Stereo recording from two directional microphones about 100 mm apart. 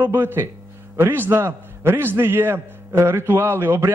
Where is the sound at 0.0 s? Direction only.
20° right (ahead or behind).